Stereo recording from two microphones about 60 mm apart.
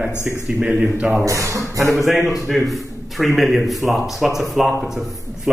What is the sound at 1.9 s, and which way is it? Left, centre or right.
A man's voice, centre.